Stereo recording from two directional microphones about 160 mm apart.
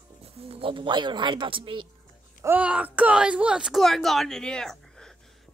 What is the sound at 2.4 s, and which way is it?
Speech, 10° right (ahead or behind).